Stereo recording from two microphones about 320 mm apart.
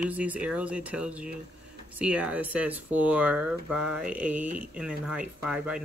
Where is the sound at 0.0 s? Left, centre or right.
Centre.